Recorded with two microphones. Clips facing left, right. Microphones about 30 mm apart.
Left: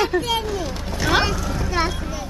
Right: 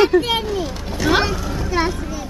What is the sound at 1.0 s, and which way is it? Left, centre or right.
Speech, centre.